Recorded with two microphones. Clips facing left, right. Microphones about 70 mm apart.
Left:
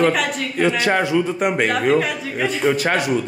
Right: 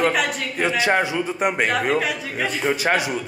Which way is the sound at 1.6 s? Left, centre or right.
Centre.